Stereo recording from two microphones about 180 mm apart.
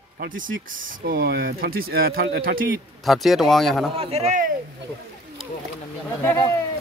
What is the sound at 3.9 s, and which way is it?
Speech, 35° right (ahead or behind).